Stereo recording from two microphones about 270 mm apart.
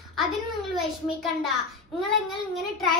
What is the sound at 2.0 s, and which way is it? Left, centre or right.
Speech, centre.